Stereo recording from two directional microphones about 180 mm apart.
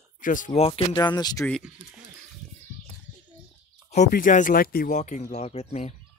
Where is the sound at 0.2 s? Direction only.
45° left (ahead or behind).